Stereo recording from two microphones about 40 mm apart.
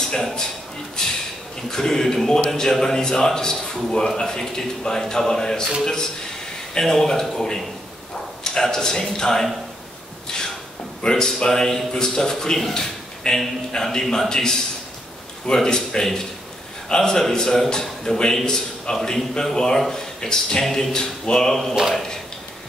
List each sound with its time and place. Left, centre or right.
0.0 s a man's voice: centre
1.0 s a sound: centre
1.7 s a man's voice: centre
6.8 s a man's voice: centre
10.2 s a sound: centre
11.0 s a man's voice: centre
13.2 s speech: centre
14.0 s a man's voice: centre